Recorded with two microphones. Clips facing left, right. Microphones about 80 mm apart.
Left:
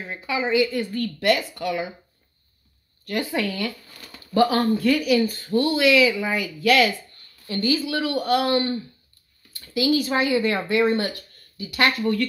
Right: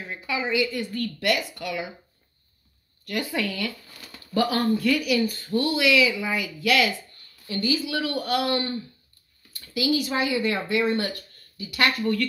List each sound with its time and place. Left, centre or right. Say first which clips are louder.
0.1 s speech: left 4 dB; left
3.1 s a woman's voice: left 3 dB; left
9.5 s speech: left 3 dB; left